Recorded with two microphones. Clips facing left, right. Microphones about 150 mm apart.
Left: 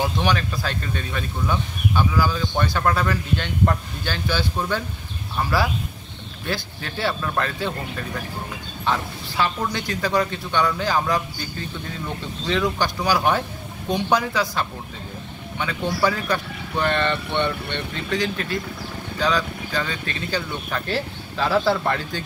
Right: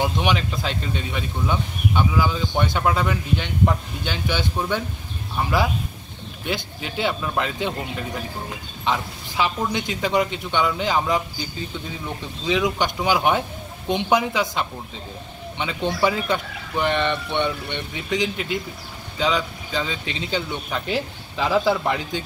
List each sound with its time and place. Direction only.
0.0 s speech: 15° right (ahead or behind)
12.4 s speech: 15° right (ahead or behind)